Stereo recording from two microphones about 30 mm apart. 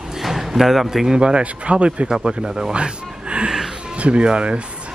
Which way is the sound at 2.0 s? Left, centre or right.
Centre.